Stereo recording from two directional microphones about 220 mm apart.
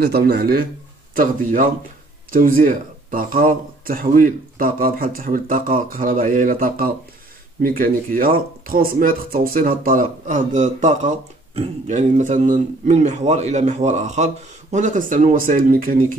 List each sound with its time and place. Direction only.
0.0 s speech: 45° right (ahead or behind)